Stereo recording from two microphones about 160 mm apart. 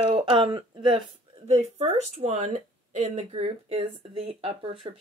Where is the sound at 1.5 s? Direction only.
45° right (ahead or behind).